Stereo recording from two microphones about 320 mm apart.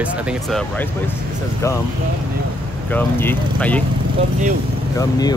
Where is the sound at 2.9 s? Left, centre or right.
Centre.